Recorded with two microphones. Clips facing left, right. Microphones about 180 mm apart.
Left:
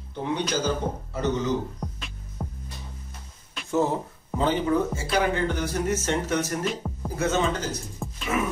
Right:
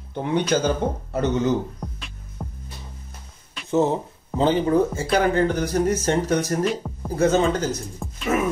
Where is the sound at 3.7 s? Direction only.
20° right (ahead or behind); by 7.7 s 35° right (ahead or behind).